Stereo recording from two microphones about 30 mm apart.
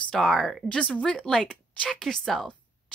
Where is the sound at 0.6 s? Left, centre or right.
Left.